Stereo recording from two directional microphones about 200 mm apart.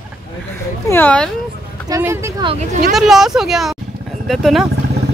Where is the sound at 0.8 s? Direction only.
10° left (ahead or behind).